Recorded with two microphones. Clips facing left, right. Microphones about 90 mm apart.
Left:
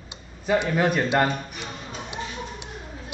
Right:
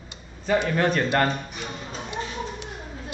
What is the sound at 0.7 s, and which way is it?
Speech, 5° left (ahead or behind).